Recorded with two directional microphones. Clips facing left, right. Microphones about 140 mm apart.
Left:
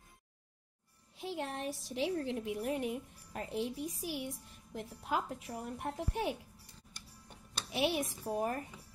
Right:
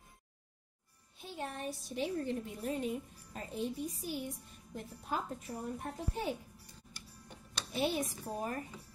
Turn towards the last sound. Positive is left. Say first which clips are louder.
# left 1 dB
turn(degrees=70)  # may be behind; listen again after turning